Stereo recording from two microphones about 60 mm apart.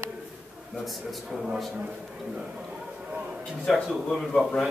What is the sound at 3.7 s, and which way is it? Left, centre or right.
Speech, centre.